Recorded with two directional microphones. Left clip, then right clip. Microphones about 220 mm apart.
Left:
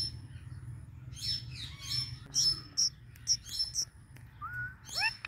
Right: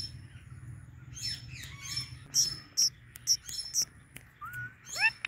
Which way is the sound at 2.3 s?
15° right (ahead or behind).